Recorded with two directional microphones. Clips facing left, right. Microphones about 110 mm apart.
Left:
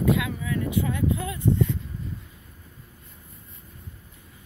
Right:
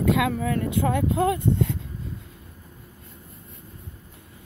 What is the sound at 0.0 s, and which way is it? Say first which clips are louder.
Speech: right 3 dB; 75° right (ahead or behind).